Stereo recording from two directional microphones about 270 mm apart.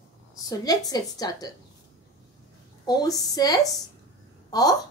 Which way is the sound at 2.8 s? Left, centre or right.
Centre.